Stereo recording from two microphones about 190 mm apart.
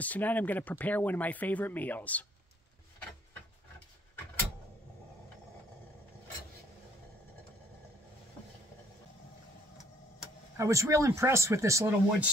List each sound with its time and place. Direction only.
0.0 s speech: 10° left (ahead or behind)
10.6 s speech: 15° right (ahead or behind)